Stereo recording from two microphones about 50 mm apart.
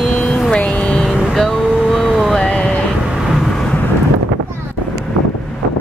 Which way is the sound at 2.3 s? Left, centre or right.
Left.